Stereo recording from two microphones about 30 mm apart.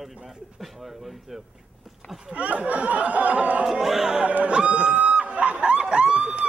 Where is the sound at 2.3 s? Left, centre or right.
Right.